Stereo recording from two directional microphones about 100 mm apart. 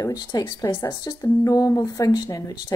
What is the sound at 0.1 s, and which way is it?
Speech, 40° left (ahead or behind).